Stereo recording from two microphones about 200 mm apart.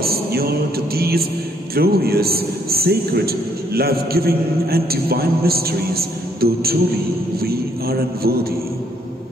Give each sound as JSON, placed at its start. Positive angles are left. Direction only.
{"t": 0.0, "sound": "music", "side_deg": -50}
{"t": 0.9, "sound": "a sound", "side_deg": -50}
{"t": 1.8, "sound": "a man's voice", "side_deg": -50}